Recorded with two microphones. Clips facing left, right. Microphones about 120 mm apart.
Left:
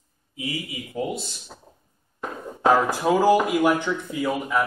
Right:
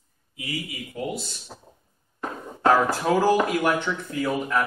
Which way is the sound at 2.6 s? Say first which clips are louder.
Left 1 dB; 15° left (ahead or behind).